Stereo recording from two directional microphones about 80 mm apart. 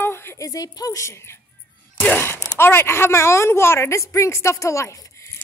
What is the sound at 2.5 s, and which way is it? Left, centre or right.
A woman's voice, left.